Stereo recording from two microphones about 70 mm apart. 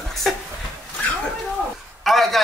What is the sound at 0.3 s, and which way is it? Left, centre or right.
Speech, centre.